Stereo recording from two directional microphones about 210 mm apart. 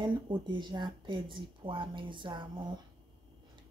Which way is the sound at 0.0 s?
20° right (ahead or behind).